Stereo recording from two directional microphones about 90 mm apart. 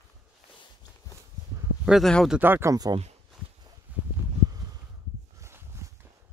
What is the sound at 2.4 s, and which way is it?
Speech, 20° right (ahead or behind).